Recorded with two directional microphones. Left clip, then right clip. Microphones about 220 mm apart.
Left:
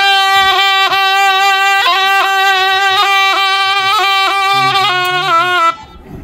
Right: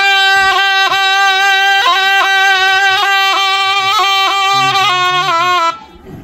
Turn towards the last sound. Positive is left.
turn(degrees=-5)  # may be behind; listen again after turning